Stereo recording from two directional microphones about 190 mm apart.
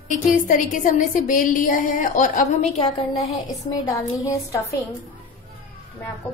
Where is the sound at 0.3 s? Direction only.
40° left (ahead or behind).